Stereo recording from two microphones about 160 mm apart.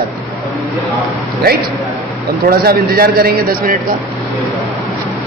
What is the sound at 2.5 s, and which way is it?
A man's voice, 70° right (ahead or behind).